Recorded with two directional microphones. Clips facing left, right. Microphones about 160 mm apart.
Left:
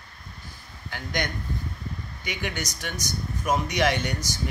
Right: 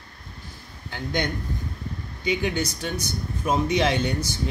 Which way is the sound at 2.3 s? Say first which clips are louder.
Right 7 dB; 30° right (ahead or behind).